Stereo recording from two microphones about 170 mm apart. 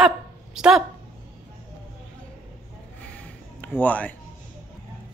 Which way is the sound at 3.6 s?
10° left (ahead or behind).